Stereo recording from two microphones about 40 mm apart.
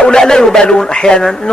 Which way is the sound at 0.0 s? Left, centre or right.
Centre.